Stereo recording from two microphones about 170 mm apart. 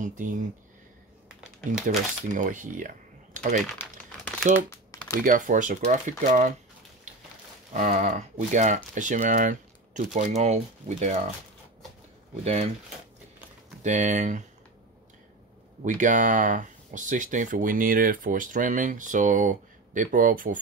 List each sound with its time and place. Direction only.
0.0 s speech: 50° right (ahead or behind)
1.9 s speech: 50° right (ahead or behind)
3.7 s crumpling: 10° left (ahead or behind)
5.2 s speech: 50° right (ahead or behind)
7.7 s speech: 45° right (ahead or behind)
13.8 s speech: 45° right (ahead or behind)
15.8 s speech: 50° right (ahead or behind)